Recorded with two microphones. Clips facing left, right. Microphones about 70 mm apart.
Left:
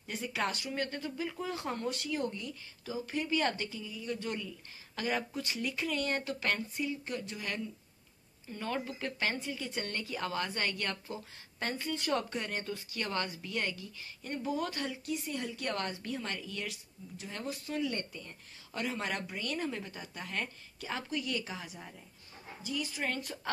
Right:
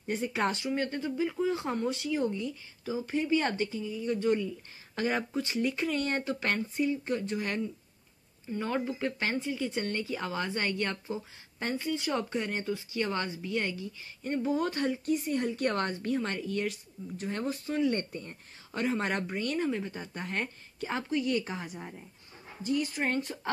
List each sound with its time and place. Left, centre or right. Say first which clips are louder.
0.0 s speech: right 5 dB; right
8.5 s speech: right 5 dB; right
18.7 s speech: right 5 dB; right
19.7 s speech: right 7 dB; centre
20.0 s speech: right 5 dB; right
20.3 s a woman's voice: right 3 dB; right